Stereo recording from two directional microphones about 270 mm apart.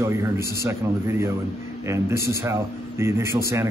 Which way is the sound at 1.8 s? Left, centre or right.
Centre.